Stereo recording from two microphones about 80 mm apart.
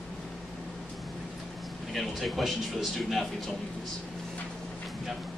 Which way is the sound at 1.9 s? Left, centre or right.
Centre.